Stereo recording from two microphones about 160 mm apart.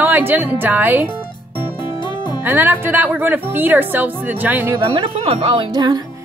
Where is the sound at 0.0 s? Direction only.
15° right (ahead or behind).